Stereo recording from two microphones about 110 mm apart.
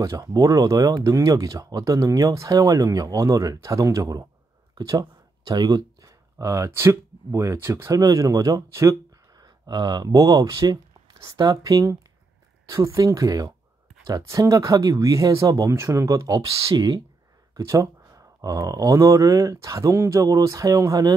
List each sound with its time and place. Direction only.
0.0 s speech: 30° right (ahead or behind)
9.4 s speech: 40° right (ahead or behind)